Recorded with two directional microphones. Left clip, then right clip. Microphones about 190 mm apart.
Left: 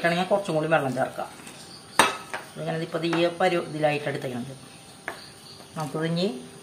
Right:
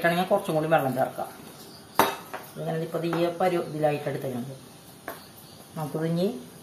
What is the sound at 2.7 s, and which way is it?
Speech, 5° right (ahead or behind).